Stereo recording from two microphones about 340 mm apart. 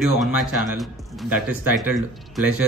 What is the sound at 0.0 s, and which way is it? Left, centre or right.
Speech, centre.